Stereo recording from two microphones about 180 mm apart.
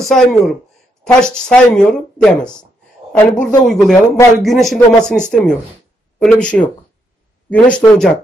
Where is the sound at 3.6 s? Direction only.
Centre (ahead or behind).